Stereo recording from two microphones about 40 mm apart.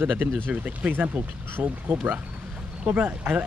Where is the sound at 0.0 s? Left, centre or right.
Right.